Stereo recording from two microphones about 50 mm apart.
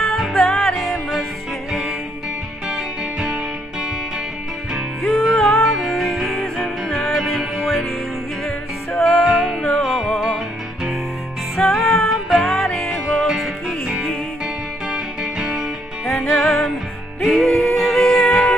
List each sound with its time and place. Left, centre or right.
0.2 s music: centre
4.7 s music: centre
9.0 s music: centre
9.6 s music: centre
11.5 s music: centre
13.8 s music: centre
16.1 s music: centre